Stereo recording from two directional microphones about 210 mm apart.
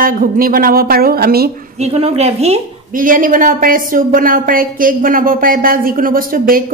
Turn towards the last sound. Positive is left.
turn(degrees=-40)  # may be behind; listen again after turning